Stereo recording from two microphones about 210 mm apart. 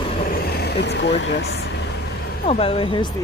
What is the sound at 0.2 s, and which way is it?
Speech, 45° left (ahead or behind).